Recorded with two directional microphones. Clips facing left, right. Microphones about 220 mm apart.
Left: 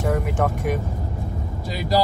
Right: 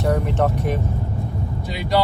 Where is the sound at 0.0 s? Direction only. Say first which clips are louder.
Right 2 dB; 10° left (ahead or behind).